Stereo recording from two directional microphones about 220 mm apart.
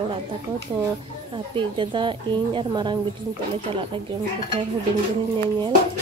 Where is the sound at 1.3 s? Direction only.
20° right (ahead or behind).